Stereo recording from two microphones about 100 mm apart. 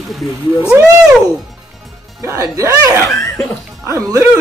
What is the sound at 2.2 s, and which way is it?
Speech, 30° right (ahead or behind).